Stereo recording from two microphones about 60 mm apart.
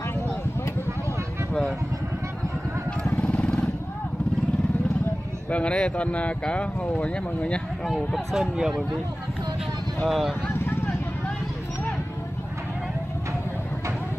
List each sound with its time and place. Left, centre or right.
3.1 s vehicle: left
5.5 s speech: centre
7.8 s speech: centre
10.0 s speech: centre
10.5 s vehicle: left